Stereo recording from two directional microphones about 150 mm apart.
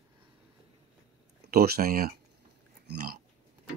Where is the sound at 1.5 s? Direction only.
90° right.